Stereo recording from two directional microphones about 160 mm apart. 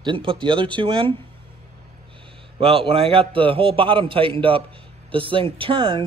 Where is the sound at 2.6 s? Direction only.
35° right (ahead or behind).